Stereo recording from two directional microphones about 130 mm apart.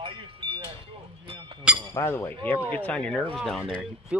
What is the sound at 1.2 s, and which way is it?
Chink, 40° right (ahead or behind).